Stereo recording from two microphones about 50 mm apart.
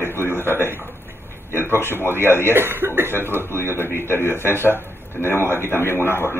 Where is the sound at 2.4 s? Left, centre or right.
Right.